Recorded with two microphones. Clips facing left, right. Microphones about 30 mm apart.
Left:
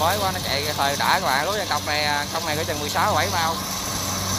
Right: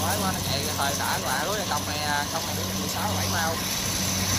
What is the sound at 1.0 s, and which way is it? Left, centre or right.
Speech, left.